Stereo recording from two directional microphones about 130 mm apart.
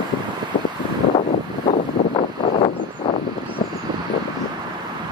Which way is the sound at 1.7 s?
55° left (ahead or behind).